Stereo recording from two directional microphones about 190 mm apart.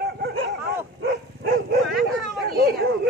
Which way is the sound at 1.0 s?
55° right (ahead or behind).